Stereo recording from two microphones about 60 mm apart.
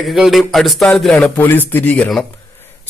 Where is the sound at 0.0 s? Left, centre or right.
Centre.